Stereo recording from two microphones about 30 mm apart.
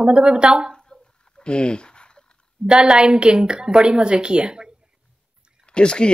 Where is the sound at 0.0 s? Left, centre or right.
Right.